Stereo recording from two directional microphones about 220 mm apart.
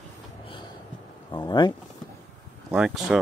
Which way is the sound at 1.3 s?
20° left (ahead or behind).